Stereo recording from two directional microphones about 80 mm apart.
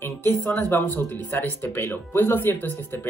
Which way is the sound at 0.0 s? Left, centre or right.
Left.